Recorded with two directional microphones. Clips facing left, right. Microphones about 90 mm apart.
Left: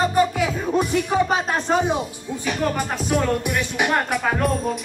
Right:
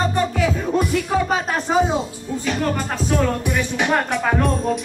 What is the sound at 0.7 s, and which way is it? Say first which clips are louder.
Music: left 2 dB; 20° left (ahead or behind).